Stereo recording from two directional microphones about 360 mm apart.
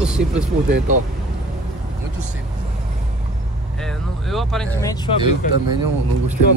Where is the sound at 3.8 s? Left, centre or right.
Centre.